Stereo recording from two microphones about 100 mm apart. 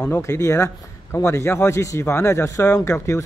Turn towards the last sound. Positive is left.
turn(degrees=30)  # may be behind; listen again after turning